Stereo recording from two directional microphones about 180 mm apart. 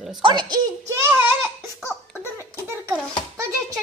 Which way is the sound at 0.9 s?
15° right (ahead or behind).